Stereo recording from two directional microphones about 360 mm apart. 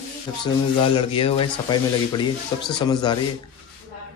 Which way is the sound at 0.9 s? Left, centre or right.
Centre.